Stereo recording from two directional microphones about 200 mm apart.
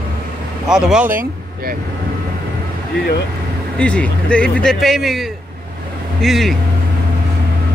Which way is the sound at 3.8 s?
5° left (ahead or behind).